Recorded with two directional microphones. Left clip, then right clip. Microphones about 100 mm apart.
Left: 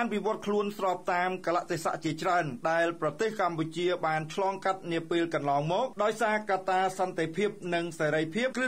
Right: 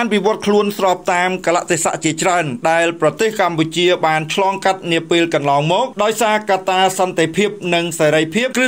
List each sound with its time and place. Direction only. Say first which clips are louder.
0.0 s speech: right 14 dB; 35° right (ahead or behind)